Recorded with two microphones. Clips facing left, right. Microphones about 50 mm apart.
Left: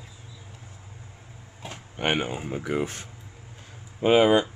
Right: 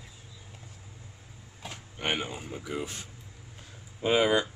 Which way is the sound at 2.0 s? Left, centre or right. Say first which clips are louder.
Left 6 dB; left.